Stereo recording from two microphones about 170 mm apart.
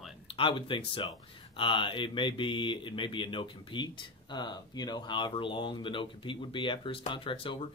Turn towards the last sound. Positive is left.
turn(degrees=30)  # may be behind; listen again after turning